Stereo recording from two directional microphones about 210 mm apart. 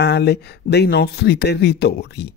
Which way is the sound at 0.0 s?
55° left (ahead or behind).